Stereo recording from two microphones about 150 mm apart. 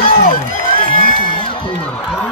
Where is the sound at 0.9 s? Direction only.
35° left (ahead or behind).